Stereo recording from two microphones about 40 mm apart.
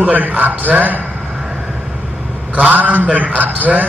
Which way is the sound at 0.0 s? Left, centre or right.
Right.